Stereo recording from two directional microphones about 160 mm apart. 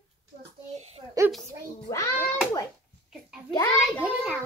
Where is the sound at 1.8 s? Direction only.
20° left (ahead or behind).